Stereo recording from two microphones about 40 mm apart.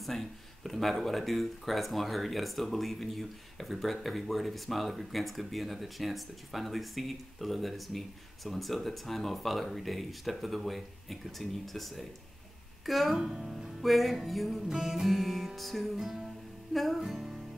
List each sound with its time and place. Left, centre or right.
0.0 s speech: centre
13.2 s speech: centre
13.8 s speech: centre
16.0 s speech: centre
17.1 s music: centre